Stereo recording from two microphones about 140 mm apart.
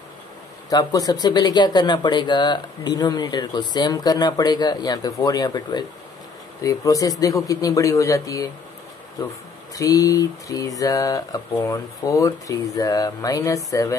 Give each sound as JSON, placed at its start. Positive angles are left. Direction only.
{"t": 0.7, "sound": "speech", "side_deg": 25}
{"t": 9.8, "sound": "speech", "side_deg": 25}